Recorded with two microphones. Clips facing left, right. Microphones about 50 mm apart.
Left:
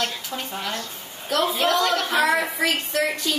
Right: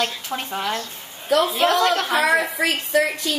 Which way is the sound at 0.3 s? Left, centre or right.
Right.